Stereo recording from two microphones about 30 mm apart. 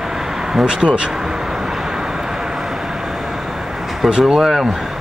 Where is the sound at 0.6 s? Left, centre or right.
Right.